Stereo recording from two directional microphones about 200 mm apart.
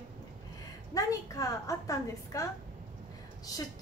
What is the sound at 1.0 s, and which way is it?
A woman's voice, 15° left (ahead or behind).